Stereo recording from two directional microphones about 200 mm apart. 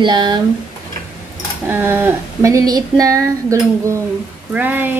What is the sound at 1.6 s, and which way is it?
Speech, 10° right (ahead or behind).